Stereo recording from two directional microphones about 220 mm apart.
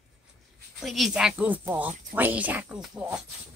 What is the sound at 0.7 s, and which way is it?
Speech, centre (ahead or behind).